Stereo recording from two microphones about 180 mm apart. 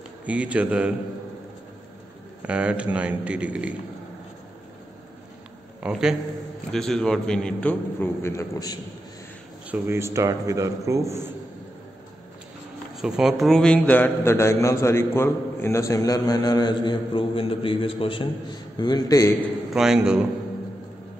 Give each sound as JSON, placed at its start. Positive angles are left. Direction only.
{"t": 0.2, "sound": "a man's voice", "side_deg": -5}
{"t": 2.4, "sound": "a man's voice", "side_deg": -5}
{"t": 5.8, "sound": "a man's voice", "side_deg": -5}
{"t": 9.7, "sound": "a man's voice", "side_deg": -15}
{"t": 12.9, "sound": "a man's voice", "side_deg": -5}
{"t": 19.4, "sound": "a man's voice", "side_deg": -5}